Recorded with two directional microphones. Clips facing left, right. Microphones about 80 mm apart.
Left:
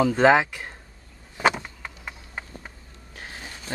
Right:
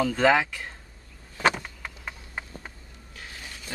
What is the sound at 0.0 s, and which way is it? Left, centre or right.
Speech, left.